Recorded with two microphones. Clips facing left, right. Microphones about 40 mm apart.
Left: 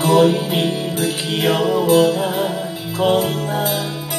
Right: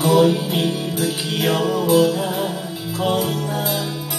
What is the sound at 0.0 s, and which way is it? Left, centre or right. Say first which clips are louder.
Music: left 1 dB; centre.